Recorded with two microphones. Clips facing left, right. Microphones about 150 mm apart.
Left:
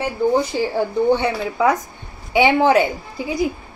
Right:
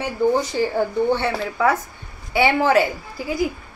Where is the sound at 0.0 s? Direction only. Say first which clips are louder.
Left 1 dB; 10° left (ahead or behind).